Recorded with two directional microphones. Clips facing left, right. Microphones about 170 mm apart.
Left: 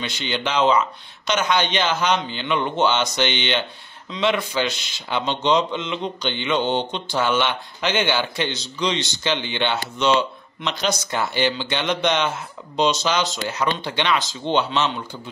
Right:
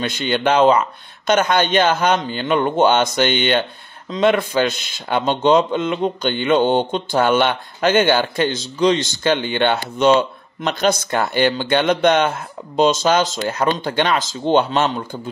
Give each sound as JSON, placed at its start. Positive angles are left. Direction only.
{"t": 0.0, "sound": "speech", "side_deg": -55}